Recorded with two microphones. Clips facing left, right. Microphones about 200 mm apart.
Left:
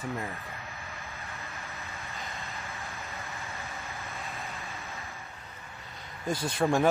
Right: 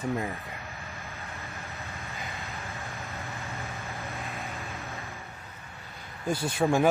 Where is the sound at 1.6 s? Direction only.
Centre (ahead or behind).